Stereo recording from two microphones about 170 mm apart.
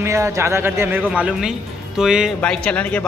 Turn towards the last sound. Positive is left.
turn(degrees=5)  # may be behind; listen again after turning